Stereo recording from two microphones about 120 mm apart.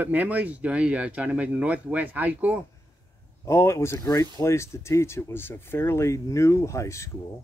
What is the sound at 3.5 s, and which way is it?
Speech, 25° left (ahead or behind).